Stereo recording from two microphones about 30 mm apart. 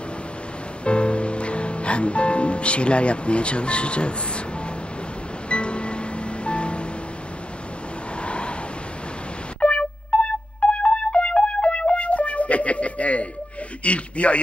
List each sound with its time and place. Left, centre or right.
0.8 s music: left
5.5 s music: left
8.2 s a sound: left
9.6 s music: left
13.8 s speech: left